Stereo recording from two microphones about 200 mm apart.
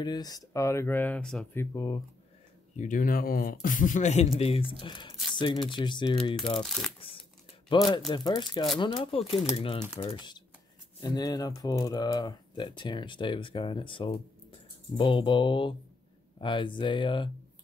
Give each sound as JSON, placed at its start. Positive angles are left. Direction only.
{"t": 0.0, "sound": "speech", "side_deg": 20}
{"t": 2.7, "sound": "a man's voice", "side_deg": 40}
{"t": 6.6, "sound": "speech", "side_deg": 0}
{"t": 7.0, "sound": "crumpling", "side_deg": 25}
{"t": 7.7, "sound": "speech", "side_deg": 25}